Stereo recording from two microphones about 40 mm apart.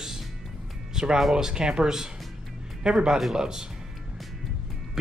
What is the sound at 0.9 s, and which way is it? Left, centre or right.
Music, centre.